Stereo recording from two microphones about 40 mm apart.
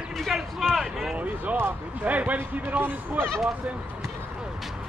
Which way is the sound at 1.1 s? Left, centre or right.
Right.